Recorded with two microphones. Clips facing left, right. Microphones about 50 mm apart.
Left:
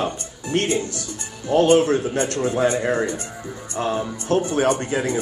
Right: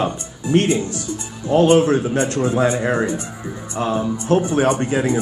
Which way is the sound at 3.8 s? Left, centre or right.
Right.